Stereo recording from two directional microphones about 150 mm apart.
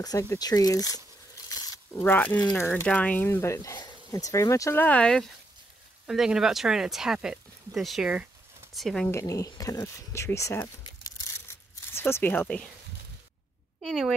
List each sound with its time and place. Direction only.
0.0 s speech: 20° left (ahead or behind)
1.5 s a sound: 25° left (ahead or behind)
2.0 s speech: 10° left (ahead or behind)
6.0 s speech: 5° right (ahead or behind)
8.8 s speech: 5° left (ahead or behind)
9.1 s speech: 25° left (ahead or behind)
10.8 s crumpling: 25° left (ahead or behind)
11.9 s speech: 15° left (ahead or behind)
13.8 s speech: centre (ahead or behind)